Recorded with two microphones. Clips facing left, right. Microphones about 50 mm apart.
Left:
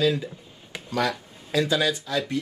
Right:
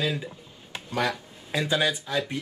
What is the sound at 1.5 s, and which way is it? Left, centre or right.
Speech, right.